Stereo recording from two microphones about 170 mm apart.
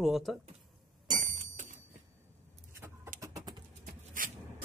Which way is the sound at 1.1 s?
50° right (ahead or behind).